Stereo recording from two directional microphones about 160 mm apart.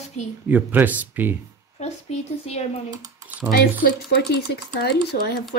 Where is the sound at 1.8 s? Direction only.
45° left (ahead or behind).